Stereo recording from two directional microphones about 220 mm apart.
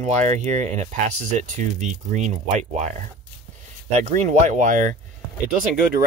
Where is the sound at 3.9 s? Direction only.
30° right (ahead or behind).